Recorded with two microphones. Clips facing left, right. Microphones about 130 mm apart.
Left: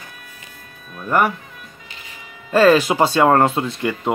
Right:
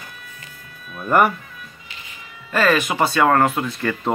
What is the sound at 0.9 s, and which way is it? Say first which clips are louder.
Music: right 1 dB; 5° right (ahead or behind).